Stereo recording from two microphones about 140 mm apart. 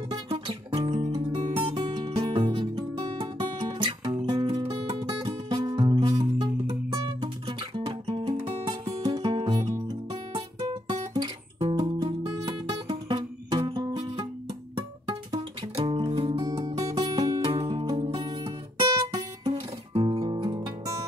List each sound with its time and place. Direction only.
0.1 s music: 35° right (ahead or behind)
8.8 s music: 30° right (ahead or behind)
10.3 s guitar: 30° right (ahead or behind)
11.6 s music: 45° right (ahead or behind); by 21.0 s 25° right (ahead or behind)